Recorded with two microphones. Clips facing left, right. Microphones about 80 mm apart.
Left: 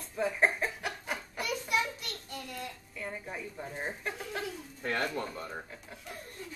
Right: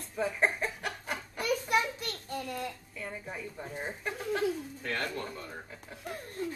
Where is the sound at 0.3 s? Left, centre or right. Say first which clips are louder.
Left 2 dB; centre.